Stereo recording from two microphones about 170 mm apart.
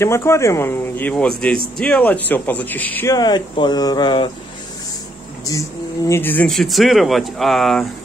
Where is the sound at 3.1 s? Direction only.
25° left (ahead or behind).